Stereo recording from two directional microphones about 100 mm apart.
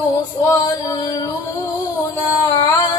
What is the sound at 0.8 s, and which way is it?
Music, 45° left (ahead or behind).